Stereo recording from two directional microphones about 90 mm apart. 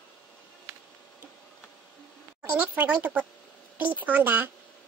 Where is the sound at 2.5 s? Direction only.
15° right (ahead or behind).